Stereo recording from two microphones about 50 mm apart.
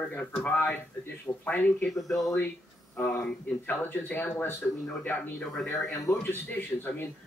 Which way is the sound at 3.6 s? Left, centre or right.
Left.